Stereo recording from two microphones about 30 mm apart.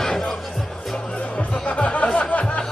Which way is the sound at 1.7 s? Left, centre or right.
Left.